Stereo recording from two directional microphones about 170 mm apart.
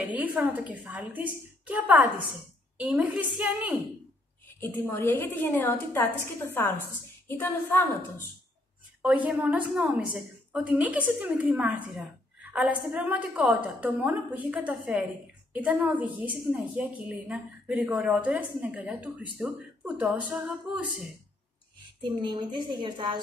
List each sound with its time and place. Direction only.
0.0 s a woman's voice: 10° right (ahead or behind)
4.5 s a woman's voice: 10° left (ahead or behind)
9.0 s a woman's voice: 5° right (ahead or behind)
22.2 s a woman's voice: 30° right (ahead or behind)